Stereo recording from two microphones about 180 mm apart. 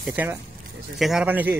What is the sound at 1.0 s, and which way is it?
Speech, 5° right (ahead or behind).